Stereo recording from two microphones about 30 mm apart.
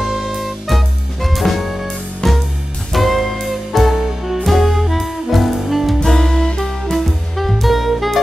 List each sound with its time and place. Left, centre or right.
0.0 s music: centre
6.0 s music: centre
6.4 s music: left
6.9 s music: centre